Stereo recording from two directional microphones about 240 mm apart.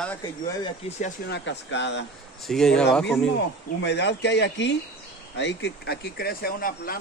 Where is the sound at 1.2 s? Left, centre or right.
Left.